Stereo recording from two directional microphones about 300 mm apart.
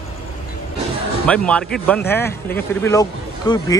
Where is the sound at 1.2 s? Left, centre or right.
Centre.